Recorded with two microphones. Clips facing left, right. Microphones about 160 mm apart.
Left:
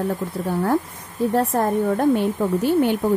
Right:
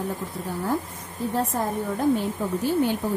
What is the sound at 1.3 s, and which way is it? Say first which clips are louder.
A woman's voice: left 6 dB; 60° left (ahead or behind).